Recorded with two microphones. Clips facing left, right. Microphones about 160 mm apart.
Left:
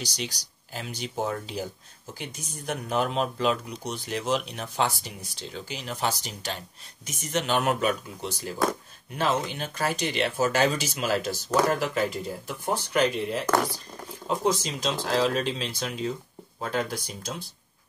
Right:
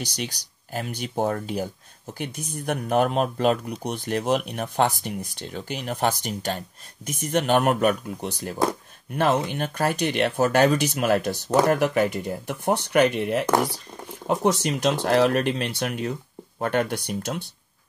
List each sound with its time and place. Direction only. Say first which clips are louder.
0.0 s speech: right 3 dB; 55° right (ahead or behind)